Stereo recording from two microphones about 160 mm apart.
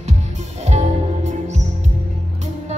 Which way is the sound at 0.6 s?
45° right (ahead or behind).